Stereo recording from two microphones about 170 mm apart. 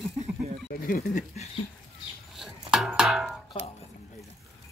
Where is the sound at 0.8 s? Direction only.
50° left (ahead or behind).